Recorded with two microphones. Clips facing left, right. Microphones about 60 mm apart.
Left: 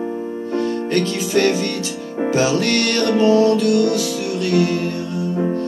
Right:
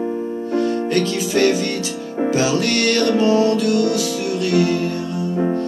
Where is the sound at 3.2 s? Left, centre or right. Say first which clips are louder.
Left 5 dB; right.